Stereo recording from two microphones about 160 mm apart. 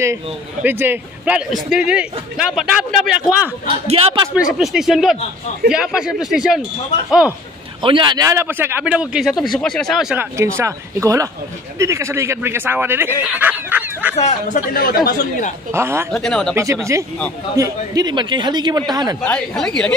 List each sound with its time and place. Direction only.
0.0 s a man's voice: 15° right (ahead or behind)
3.6 s speech: 40° right (ahead or behind)
4.4 s speech: 5° right (ahead or behind)
7.8 s a man's voice: 30° right (ahead or behind); by 10.2 s 5° right (ahead or behind)
10.3 s a man's voice: 20° right (ahead or behind)
14.1 s speech: 45° left (ahead or behind)
14.7 s speech: 65° left (ahead or behind)
15.7 s a man's voice: 15° right (ahead or behind)
16.1 s speech: 5° left (ahead or behind)
17.6 s a man's voice: 20° right (ahead or behind)
19.2 s speech: 5° left (ahead or behind)